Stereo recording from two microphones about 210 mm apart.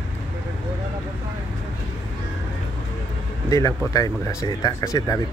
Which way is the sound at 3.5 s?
15° left (ahead or behind).